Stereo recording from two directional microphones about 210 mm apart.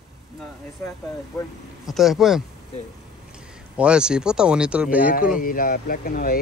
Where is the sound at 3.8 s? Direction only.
5° right (ahead or behind).